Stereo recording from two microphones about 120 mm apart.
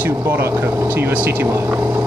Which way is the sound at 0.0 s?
15° right (ahead or behind).